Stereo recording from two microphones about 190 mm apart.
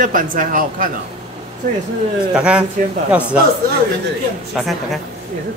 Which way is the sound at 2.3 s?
5° right (ahead or behind).